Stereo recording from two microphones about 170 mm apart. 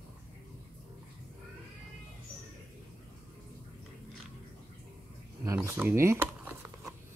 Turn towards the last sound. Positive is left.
turn(degrees=-10)  # may be behind; listen again after turning